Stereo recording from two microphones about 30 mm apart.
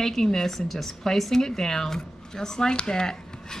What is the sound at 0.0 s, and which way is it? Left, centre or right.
Speech, centre.